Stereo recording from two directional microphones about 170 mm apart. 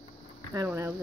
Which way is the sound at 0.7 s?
10° right (ahead or behind).